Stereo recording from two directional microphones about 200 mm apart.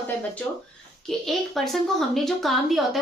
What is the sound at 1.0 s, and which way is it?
Speech, centre (ahead or behind).